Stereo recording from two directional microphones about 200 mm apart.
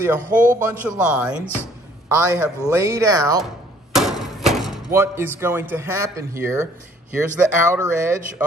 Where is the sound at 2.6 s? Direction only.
15° right (ahead or behind).